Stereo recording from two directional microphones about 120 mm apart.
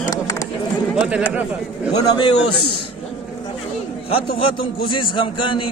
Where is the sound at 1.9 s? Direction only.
35° left (ahead or behind).